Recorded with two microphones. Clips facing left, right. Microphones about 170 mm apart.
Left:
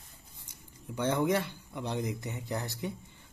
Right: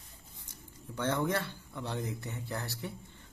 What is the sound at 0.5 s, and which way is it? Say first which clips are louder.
Speech: left 3 dB; 15° left (ahead or behind).